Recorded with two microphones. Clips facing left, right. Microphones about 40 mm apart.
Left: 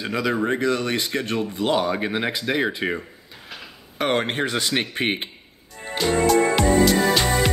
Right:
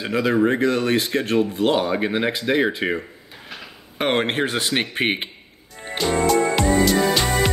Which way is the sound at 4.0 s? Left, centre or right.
Right.